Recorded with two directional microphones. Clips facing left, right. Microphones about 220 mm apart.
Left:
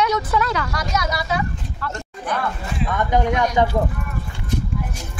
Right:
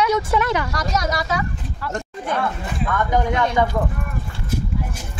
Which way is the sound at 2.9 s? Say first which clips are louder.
Left 1 dB; 20° left (ahead or behind).